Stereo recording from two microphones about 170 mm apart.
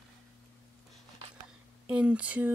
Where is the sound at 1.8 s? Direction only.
5° right (ahead or behind).